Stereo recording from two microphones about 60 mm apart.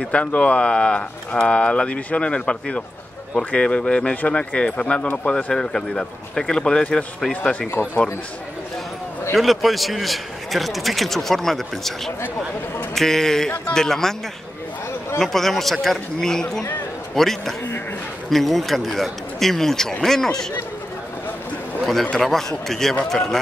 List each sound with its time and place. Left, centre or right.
0.0 s speech: left
7.7 s speech: left
9.3 s a man's voice: centre
15.1 s a man's voice: centre
22.1 s a man's voice: centre